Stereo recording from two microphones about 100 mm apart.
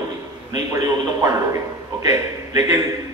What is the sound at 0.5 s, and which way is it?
A man's voice, 35° right (ahead or behind).